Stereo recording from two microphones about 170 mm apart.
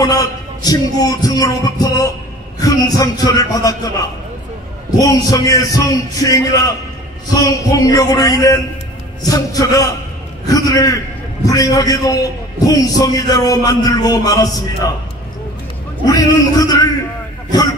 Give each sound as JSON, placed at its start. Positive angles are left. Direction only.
{"t": 0.0, "sound": "a man's voice", "side_deg": 20}
{"t": 4.9, "sound": "a man's voice", "side_deg": 20}
{"t": 16.1, "sound": "a man's voice", "side_deg": 20}